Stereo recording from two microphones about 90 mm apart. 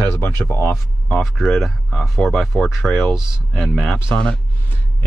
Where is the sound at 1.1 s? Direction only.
Centre (ahead or behind).